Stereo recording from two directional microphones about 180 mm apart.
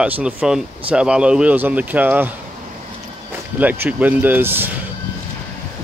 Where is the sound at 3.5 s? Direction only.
10° right (ahead or behind).